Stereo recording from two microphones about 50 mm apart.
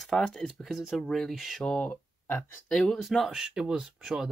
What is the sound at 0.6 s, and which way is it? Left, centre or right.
Speech, centre.